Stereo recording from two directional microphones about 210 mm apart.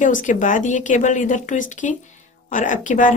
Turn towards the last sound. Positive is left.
turn(degrees=35)  # may be behind; listen again after turning